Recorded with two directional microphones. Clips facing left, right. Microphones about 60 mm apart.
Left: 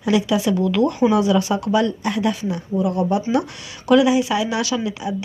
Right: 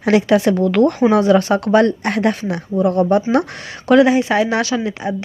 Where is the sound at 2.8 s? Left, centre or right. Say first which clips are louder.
Right 6 dB; right.